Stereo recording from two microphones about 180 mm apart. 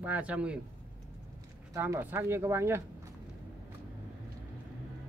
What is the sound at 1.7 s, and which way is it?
Speech, 15° right (ahead or behind).